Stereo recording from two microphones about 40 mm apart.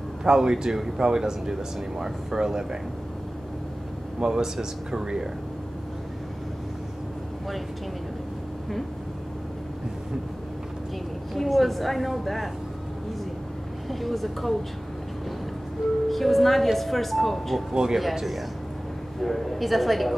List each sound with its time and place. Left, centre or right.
0.2 s speech: centre
4.2 s speech: centre
11.3 s a woman's voice: centre
13.8 s a woman's voice: centre
16.1 s a woman's voice: centre